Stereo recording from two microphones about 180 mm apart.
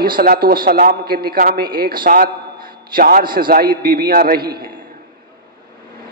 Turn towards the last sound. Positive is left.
turn(degrees=-55)  # may be behind; listen again after turning